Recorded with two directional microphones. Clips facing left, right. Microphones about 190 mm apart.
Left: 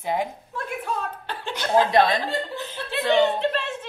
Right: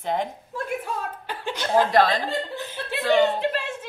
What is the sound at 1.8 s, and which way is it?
Speech, 20° left (ahead or behind).